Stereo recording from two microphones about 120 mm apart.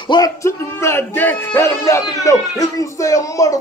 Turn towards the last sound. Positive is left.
turn(degrees=25)  # may be behind; listen again after turning